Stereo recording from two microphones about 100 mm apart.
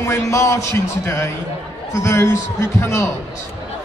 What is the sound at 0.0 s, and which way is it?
Speech, 30° left (ahead or behind).